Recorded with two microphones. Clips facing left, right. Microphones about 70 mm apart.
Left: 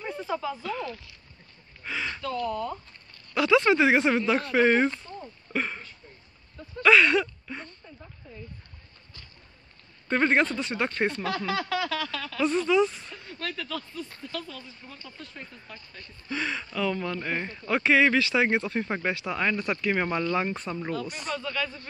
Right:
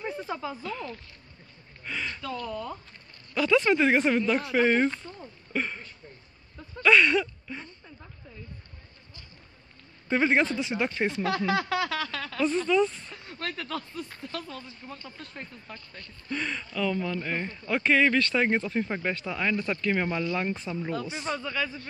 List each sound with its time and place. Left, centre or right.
0.0 s snake: centre
0.6 s speech: centre
6.8 s a sound: centre
10.0 s speech: centre
11.2 s a sound: centre
12.4 s speech: centre
13.4 s speech: right
16.3 s speech: centre
20.9 s speech: centre